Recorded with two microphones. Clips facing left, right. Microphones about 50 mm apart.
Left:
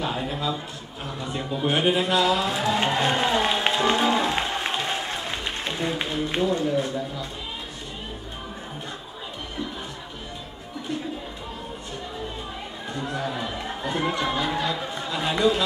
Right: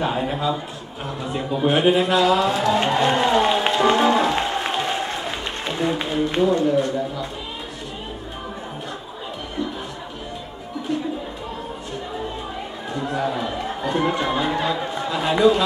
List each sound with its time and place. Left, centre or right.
0.0 s a man's voice: right
1.2 s a man's voice: centre
2.7 s music: centre
6.6 s a man's voice: centre
12.9 s a sound: centre
14.1 s chatter: centre